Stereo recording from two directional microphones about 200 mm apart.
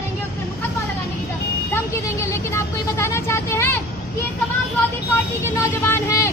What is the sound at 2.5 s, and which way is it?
Vehicle, 15° left (ahead or behind).